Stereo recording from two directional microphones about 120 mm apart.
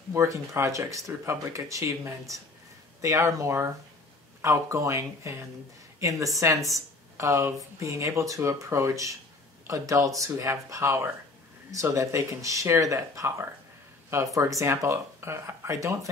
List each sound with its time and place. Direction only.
0.1 s speech: 25° right (ahead or behind)